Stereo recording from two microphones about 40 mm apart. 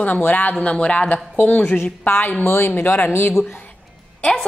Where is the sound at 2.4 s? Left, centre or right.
Left.